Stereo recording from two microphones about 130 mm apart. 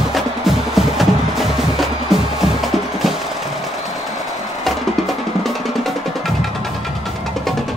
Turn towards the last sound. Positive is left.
turn(degrees=0)  # may be behind; listen again after turning